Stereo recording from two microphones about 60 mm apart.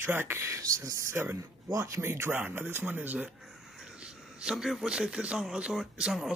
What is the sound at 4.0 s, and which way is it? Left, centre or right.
A man's voice, centre.